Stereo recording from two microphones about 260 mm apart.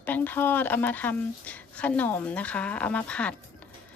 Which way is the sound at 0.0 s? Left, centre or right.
Centre.